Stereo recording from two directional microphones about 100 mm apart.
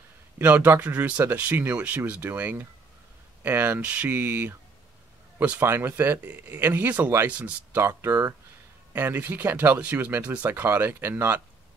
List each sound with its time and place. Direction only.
0.4 s speech: 20° right (ahead or behind)
7.8 s speech: 25° right (ahead or behind)